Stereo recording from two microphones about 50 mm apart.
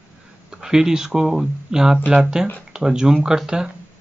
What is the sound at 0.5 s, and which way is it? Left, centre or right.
Speech, centre.